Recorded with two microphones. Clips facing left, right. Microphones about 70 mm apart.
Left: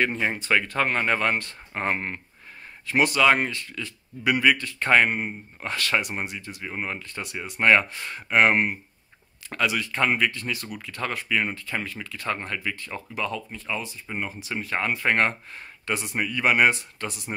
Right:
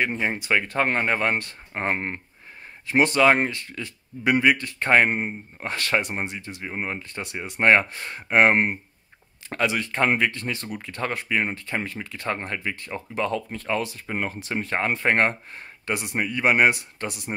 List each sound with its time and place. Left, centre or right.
0.0 s speech: centre
13.2 s speech: right
14.5 s speech: right